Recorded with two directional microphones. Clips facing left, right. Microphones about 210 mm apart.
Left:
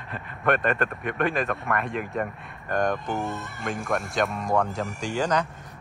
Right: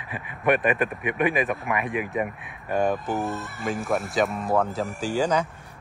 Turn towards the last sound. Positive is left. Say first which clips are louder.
# right 2 dB
turn(degrees=-10)  # may be behind; listen again after turning